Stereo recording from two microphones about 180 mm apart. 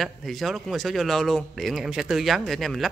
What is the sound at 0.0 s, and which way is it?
A man's voice, centre (ahead or behind).